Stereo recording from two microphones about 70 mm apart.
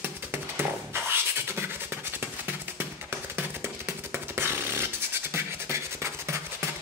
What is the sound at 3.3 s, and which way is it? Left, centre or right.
Beatboxing, right.